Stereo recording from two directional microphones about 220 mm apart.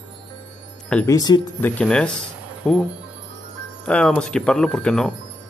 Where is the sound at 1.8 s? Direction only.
5° left (ahead or behind).